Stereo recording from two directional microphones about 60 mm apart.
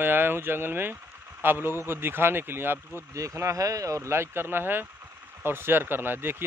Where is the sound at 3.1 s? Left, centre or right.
Right.